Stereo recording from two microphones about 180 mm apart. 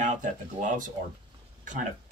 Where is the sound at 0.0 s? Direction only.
45° right (ahead or behind).